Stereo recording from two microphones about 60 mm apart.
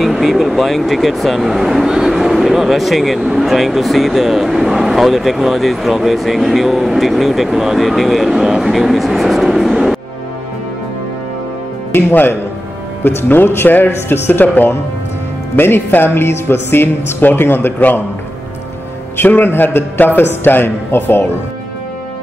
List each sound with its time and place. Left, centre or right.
0.0 s speech: centre
11.9 s speech: left
19.1 s speech: left